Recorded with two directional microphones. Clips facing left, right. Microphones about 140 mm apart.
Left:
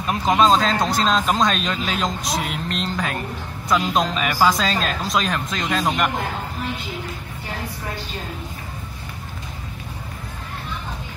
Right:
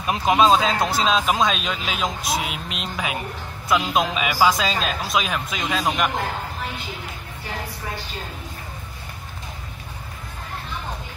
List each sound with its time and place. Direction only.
0.0 s speech: 15° right (ahead or behind)